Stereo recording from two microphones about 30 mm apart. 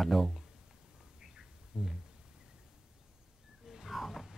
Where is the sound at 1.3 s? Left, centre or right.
Centre.